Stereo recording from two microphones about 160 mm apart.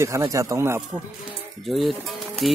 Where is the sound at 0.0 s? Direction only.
20° right (ahead or behind).